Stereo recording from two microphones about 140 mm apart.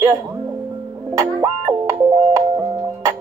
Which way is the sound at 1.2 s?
20° right (ahead or behind).